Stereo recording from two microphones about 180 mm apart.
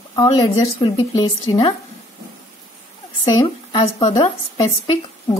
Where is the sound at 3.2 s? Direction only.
25° left (ahead or behind).